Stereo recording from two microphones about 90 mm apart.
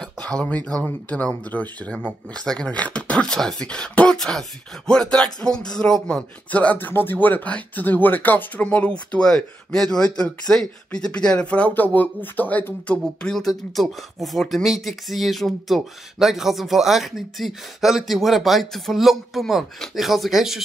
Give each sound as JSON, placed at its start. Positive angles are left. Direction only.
{"t": 0.0, "sound": "speech", "side_deg": 10}
{"t": 6.5, "sound": "speech", "side_deg": 15}
{"t": 13.0, "sound": "speech", "side_deg": 5}